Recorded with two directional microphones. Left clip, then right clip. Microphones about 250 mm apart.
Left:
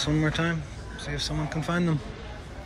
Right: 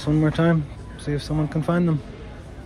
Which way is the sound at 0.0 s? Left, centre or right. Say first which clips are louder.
Right 5 dB; centre.